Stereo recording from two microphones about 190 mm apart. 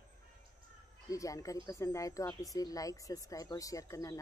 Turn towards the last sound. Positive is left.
turn(degrees=15)  # may be behind; listen again after turning